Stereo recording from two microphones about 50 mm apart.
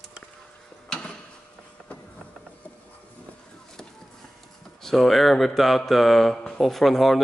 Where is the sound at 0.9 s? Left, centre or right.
Centre.